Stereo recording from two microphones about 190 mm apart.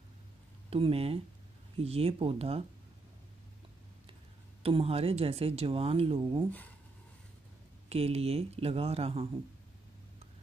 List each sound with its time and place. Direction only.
0.7 s speech: 30° right (ahead or behind)
4.6 s speech: 30° right (ahead or behind)
7.9 s speech: 30° right (ahead or behind)